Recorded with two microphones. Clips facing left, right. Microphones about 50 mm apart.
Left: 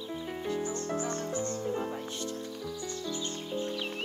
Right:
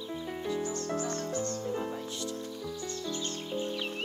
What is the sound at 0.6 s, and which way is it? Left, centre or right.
Music, left.